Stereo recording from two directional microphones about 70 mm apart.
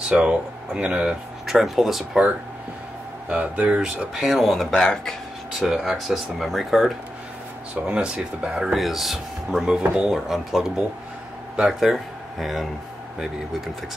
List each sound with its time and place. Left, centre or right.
0.1 s speech: centre
1.4 s speech: centre
3.3 s speech: centre
5.5 s speech: centre
7.8 s speech: centre